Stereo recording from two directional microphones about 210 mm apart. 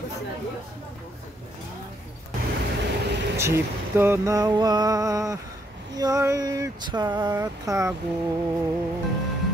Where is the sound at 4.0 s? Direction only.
15° right (ahead or behind).